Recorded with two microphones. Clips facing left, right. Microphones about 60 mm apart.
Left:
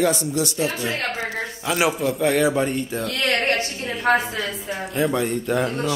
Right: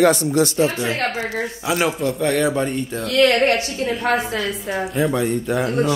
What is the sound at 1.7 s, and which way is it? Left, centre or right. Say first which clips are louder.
Speech: even; centre.